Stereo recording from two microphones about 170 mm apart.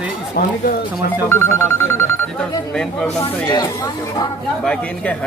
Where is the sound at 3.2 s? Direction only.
25° left (ahead or behind).